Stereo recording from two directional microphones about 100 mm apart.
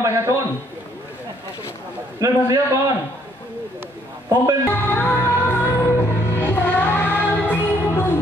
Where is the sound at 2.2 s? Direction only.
35° right (ahead or behind).